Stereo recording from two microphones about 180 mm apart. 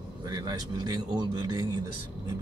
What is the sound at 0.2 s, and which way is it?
Speech, 20° right (ahead or behind).